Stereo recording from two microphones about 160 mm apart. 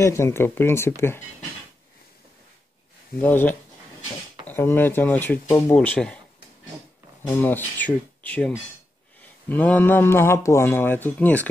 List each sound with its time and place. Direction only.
0.0 s speech: 15° left (ahead or behind)
3.2 s speech: 10° left (ahead or behind)
7.2 s speech: 10° left (ahead or behind)